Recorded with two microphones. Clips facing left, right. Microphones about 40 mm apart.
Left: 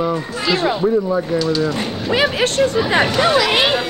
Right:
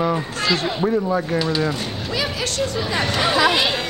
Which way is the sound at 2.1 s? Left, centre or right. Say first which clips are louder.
Left 9 dB; left.